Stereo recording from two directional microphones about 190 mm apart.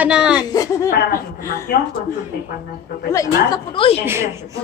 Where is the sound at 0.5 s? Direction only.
20° left (ahead or behind).